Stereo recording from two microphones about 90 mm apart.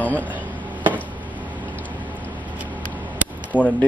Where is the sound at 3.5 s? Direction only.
15° right (ahead or behind).